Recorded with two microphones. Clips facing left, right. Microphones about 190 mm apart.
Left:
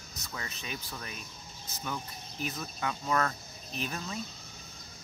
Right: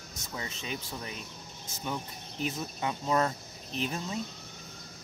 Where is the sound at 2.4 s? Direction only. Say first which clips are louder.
Right 2 dB; 25° right (ahead or behind).